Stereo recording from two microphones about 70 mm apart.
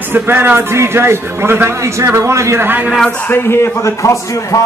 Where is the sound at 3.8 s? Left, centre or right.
Left.